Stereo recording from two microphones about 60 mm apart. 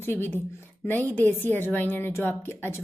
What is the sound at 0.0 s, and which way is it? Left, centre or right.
A woman's voice, left.